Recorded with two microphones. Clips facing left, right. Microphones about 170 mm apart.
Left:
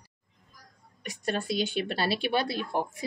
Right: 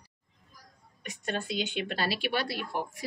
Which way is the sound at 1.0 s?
35° left (ahead or behind).